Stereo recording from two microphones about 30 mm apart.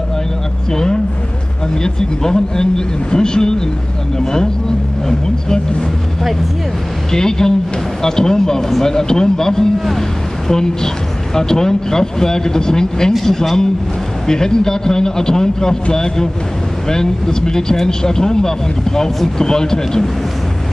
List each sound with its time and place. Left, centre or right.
1.8 s speech: left
7.1 s speech: centre
8.5 s speech: centre
13.2 s a man's voice: centre